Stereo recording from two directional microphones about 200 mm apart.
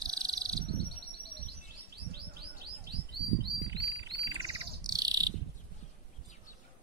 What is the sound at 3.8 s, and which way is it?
Bird, 20° right (ahead or behind).